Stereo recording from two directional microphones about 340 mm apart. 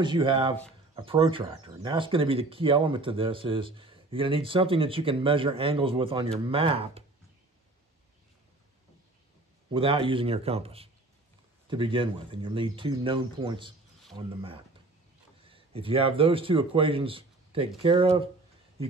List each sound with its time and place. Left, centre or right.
0.0 s speech: centre
9.7 s speech: centre